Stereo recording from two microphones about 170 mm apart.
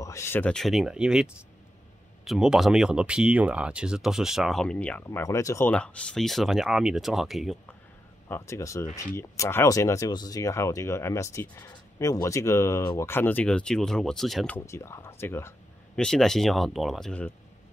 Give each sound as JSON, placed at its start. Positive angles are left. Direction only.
{"t": 0.0, "sound": "speech", "side_deg": 15}
{"t": 8.3, "sound": "speech", "side_deg": 15}
{"t": 14.7, "sound": "speech", "side_deg": 15}
{"t": 16.0, "sound": "speech", "side_deg": 0}